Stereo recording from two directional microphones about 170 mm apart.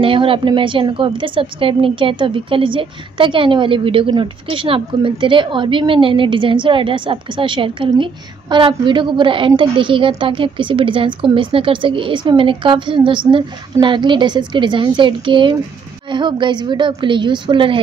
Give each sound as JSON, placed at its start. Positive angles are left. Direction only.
{"t": 0.0, "sound": "a woman's voice", "side_deg": -30}